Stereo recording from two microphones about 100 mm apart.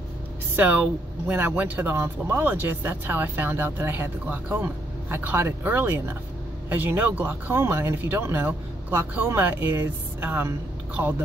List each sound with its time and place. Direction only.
0.6 s speech: 15° right (ahead or behind)